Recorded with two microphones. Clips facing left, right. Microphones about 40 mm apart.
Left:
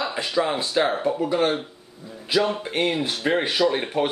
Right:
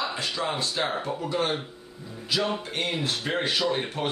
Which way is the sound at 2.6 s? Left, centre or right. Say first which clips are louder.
Left 6 dB; left.